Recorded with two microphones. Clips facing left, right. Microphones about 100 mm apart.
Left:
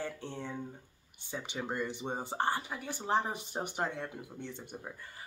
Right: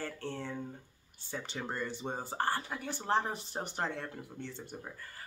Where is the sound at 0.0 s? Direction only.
15° left (ahead or behind).